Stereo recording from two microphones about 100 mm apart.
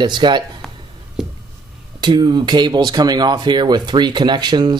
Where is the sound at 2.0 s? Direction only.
50° right (ahead or behind).